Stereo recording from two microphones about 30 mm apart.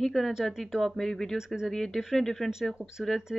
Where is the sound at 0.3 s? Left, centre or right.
Centre.